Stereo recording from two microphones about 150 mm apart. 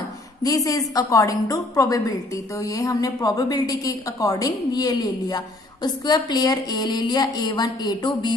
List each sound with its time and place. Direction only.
0.4 s a woman's voice: 25° left (ahead or behind)